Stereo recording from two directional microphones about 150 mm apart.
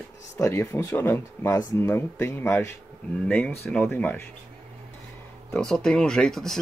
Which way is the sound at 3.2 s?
5° left (ahead or behind).